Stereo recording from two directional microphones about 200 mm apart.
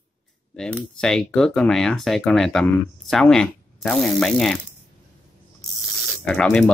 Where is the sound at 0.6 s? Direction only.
5° left (ahead or behind).